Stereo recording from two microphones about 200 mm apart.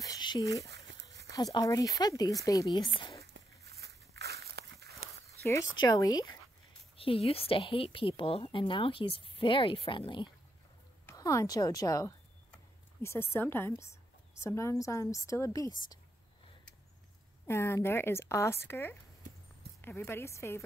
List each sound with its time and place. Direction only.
0.0 s whispering: 20° left (ahead or behind)
0.7 s a sound: 60° right (ahead or behind)
1.3 s speech: 20° left (ahead or behind)
3.3 s walk: 55° right (ahead or behind)
5.4 s a woman's voice: 15° left (ahead or behind)
17.5 s speech: 15° left (ahead or behind)